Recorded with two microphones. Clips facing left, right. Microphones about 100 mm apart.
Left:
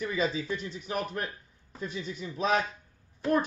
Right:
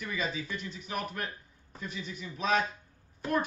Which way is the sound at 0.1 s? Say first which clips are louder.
Left 2 dB; 40° left (ahead or behind).